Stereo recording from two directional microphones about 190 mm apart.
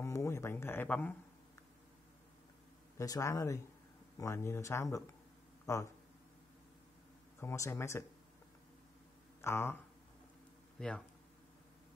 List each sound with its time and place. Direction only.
0.0 s speech: 15° left (ahead or behind)
3.0 s speech: 15° left (ahead or behind)
7.3 s speech: 15° left (ahead or behind)
9.4 s speech: 15° left (ahead or behind)
10.8 s speech: 5° left (ahead or behind)